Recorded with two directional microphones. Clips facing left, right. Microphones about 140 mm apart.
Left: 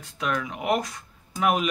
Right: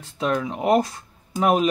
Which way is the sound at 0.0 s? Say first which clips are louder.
Right 5 dB; 30° right (ahead or behind).